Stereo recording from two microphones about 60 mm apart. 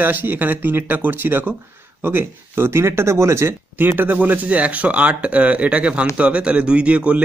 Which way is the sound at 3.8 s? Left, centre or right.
Right.